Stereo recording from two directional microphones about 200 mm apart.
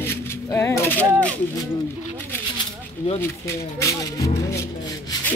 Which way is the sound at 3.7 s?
15° left (ahead or behind).